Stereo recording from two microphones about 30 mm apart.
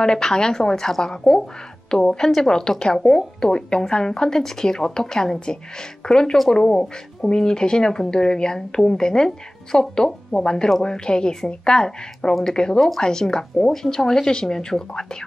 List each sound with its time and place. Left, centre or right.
0.0 s speech: left